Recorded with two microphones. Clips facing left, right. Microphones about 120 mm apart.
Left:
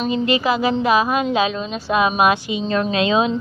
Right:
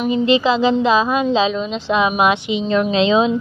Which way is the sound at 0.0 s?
20° right (ahead or behind).